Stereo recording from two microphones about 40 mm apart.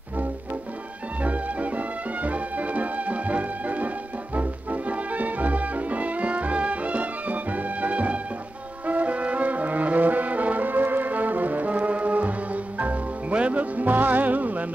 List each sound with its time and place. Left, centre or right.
1.2 s music: right
8.8 s brass instrument: right